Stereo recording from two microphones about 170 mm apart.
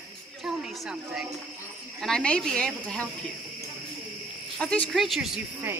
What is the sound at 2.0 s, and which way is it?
Speech, 5° left (ahead or behind).